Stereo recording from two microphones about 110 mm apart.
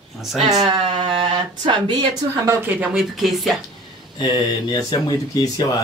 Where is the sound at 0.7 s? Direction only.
55° right (ahead or behind).